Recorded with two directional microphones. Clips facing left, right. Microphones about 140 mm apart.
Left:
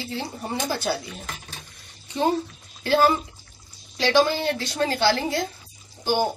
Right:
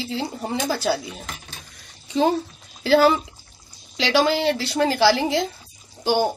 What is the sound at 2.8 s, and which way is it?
A woman's voice, 90° right.